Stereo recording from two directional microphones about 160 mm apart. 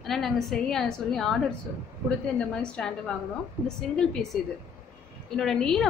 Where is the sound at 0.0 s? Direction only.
Centre (ahead or behind).